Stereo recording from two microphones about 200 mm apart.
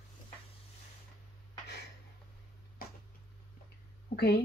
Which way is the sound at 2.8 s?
45° left (ahead or behind).